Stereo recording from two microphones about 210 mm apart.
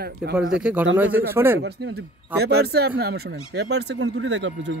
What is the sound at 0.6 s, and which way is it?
Speech, 5° right (ahead or behind).